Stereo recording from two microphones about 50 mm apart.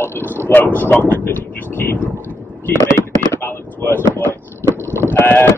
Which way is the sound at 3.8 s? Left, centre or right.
Left.